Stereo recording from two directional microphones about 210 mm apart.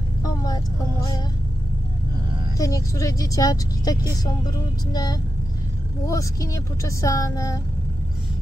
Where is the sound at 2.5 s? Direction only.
15° left (ahead or behind).